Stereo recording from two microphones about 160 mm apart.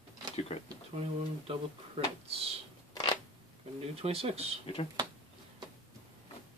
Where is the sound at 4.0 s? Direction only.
40° right (ahead or behind).